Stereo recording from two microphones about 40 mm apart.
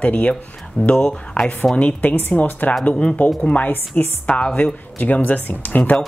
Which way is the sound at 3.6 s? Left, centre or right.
Left.